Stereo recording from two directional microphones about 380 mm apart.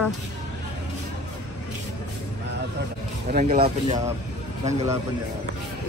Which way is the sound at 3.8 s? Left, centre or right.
Centre.